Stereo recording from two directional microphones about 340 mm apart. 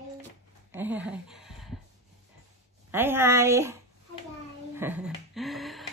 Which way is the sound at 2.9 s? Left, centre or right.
Centre.